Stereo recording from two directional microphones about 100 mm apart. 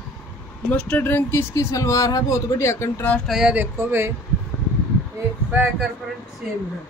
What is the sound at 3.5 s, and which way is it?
Speech, 20° right (ahead or behind).